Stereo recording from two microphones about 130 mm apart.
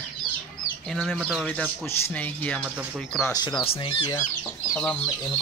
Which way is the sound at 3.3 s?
30° left (ahead or behind).